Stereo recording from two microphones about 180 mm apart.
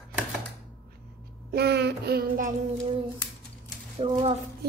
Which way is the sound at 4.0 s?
35° right (ahead or behind).